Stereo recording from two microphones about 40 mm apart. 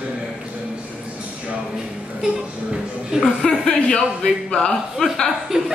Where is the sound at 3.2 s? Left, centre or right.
Centre.